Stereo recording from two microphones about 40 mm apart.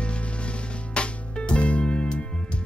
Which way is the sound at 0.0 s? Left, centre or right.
Left.